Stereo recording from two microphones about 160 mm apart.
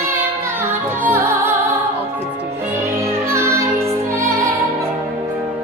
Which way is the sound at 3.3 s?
20° right (ahead or behind).